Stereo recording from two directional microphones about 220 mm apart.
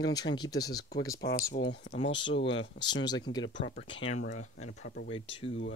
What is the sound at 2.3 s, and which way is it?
Speech, 55° left (ahead or behind).